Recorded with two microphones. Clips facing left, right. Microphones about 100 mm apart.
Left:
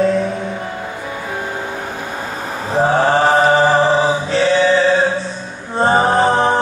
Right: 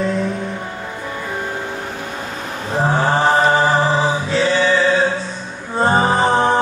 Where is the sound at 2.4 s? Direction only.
30° left (ahead or behind).